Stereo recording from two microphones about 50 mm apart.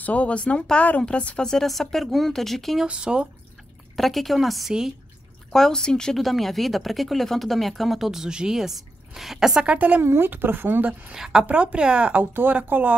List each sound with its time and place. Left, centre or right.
0.0 s speech: left
1.4 s speech: centre
2.9 s speech: right
3.9 s speech: centre
5.5 s speech: centre
6.1 s speech: centre
9.7 s speech: right
10.0 s a woman's voice: right
10.9 s speech: right
11.1 s a woman's voice: centre
11.4 s speech: right
12.2 s speech: right